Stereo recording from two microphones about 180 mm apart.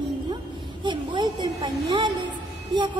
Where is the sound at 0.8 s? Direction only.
25° right (ahead or behind).